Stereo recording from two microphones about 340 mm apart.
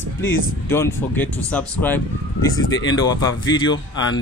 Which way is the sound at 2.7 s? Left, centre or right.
Left.